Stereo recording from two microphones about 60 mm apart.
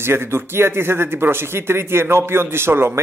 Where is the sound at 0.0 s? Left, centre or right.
Right.